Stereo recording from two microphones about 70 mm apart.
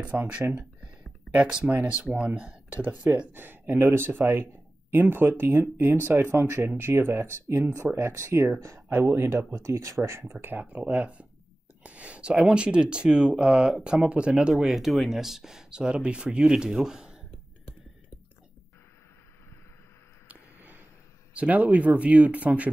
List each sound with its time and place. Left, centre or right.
0.0 s speech: right
10.4 s speech: right
14.5 s speech: centre
20.2 s a sound: right
21.3 s speech: centre